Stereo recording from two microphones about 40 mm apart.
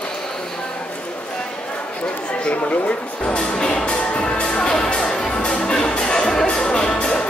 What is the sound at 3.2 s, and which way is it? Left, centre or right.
Music, left.